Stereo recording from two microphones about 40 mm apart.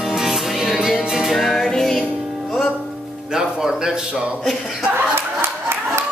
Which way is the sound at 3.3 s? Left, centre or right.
Centre.